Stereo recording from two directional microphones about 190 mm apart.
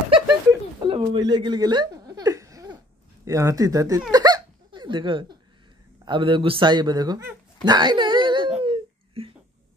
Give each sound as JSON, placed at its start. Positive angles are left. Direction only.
{"t": 0.5, "sound": "a sound", "side_deg": -15}
{"t": 0.9, "sound": "chuckle", "side_deg": -25}
{"t": 3.3, "sound": "speech", "side_deg": -15}
{"t": 4.1, "sound": "hiccup", "side_deg": -20}
{"t": 6.0, "sound": "a man's voice", "side_deg": -25}
{"t": 7.6, "sound": "a sound", "side_deg": -25}
{"t": 8.6, "sound": "laughter", "side_deg": -30}